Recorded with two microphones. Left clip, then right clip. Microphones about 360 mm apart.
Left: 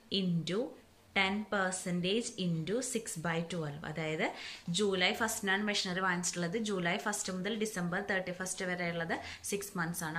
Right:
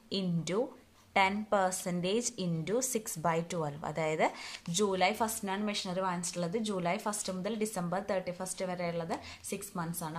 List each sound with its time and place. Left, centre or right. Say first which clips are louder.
0.1 s a woman's voice: right 1 dB; centre